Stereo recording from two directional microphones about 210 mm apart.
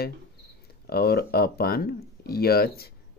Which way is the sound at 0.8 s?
45° left (ahead or behind).